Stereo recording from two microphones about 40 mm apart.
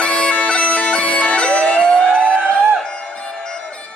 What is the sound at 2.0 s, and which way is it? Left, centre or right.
Music, left.